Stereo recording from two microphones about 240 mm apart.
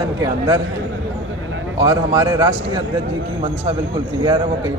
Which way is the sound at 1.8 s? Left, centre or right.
Centre.